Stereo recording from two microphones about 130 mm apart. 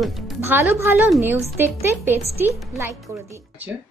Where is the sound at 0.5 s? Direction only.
20° right (ahead or behind).